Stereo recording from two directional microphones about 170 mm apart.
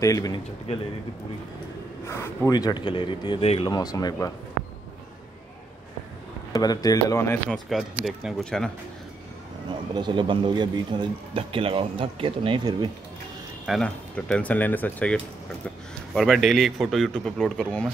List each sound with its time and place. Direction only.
0.0 s speech: 20° left (ahead or behind)
2.0 s speech: 15° left (ahead or behind)
6.5 s speech: 20° left (ahead or behind)
7.4 s a man's voice: centre (ahead or behind)
9.9 s speech: 25° right (ahead or behind)
13.7 s a man's voice: 5° left (ahead or behind)